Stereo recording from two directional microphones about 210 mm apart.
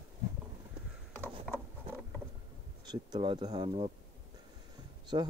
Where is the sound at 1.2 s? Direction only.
10° left (ahead or behind).